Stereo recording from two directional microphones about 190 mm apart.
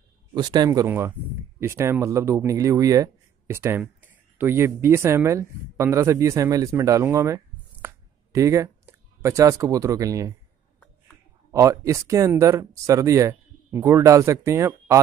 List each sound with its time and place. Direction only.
0.3 s speech: 20° right (ahead or behind)
11.5 s speech: 15° right (ahead or behind)